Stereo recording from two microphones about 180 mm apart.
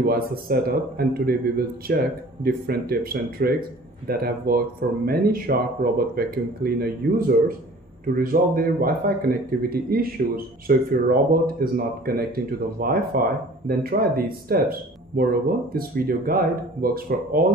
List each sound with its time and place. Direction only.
0.0 s speech: 55° right (ahead or behind)